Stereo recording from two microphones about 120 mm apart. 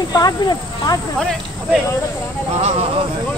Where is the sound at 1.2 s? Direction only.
5° left (ahead or behind).